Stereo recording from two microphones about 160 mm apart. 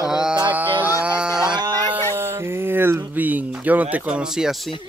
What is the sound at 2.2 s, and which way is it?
Speech, 15° right (ahead or behind).